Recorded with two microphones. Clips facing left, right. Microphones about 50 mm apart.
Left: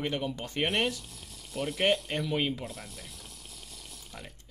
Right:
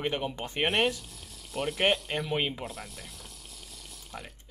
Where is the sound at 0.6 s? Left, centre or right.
Centre.